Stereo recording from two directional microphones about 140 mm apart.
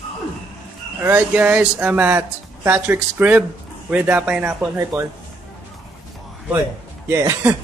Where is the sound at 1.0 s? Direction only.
10° right (ahead or behind).